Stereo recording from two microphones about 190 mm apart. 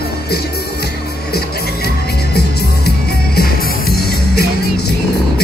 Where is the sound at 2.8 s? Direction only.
55° left (ahead or behind).